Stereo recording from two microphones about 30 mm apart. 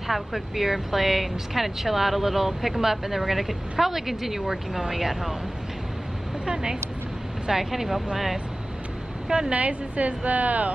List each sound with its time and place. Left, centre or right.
0.1 s speech: centre
6.4 s speech: right
7.4 s speech: centre
9.5 s a woman's voice: right